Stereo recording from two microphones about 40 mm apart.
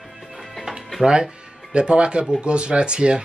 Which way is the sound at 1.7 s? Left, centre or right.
Right.